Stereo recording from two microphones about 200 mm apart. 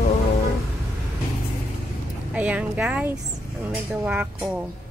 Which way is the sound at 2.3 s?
5° right (ahead or behind).